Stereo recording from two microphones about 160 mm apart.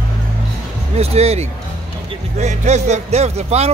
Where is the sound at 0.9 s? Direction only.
40° right (ahead or behind).